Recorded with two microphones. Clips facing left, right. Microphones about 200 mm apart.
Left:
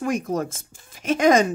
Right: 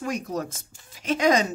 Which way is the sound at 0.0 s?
50° left (ahead or behind).